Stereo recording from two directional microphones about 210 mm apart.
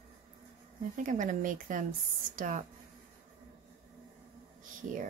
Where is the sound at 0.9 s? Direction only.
40° right (ahead or behind).